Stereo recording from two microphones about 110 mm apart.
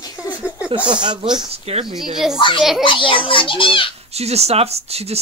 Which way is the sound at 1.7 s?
65° right (ahead or behind).